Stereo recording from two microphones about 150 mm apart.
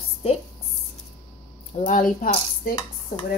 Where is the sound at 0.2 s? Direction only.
40° left (ahead or behind).